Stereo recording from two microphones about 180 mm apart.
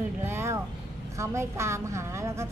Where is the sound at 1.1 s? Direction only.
15° right (ahead or behind).